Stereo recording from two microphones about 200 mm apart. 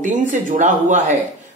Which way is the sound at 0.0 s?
40° right (ahead or behind).